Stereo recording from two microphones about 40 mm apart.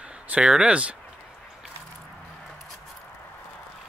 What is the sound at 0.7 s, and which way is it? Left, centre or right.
Speech, right.